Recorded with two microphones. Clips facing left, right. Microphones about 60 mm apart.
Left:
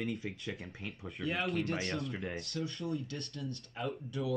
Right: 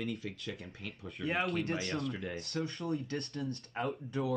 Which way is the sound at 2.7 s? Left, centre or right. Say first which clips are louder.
Right 2 dB; right.